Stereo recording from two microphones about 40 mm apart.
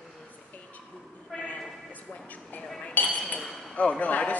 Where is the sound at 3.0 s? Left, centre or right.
Left.